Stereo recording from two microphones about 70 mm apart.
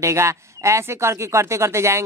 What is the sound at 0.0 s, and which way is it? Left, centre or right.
Speech, right.